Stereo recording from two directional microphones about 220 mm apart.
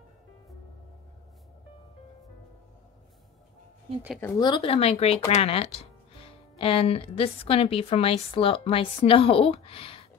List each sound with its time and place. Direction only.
4.2 s a woman's voice: 20° left (ahead or behind)